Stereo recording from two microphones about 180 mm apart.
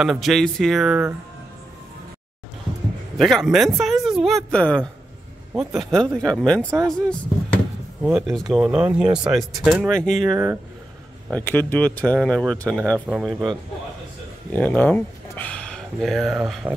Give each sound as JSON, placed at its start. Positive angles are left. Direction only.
{"t": 0.0, "sound": "speech", "side_deg": 0}
{"t": 3.2, "sound": "a woman's voice", "side_deg": 0}
{"t": 8.0, "sound": "speech", "side_deg": -5}
{"t": 14.5, "sound": "speech", "side_deg": 10}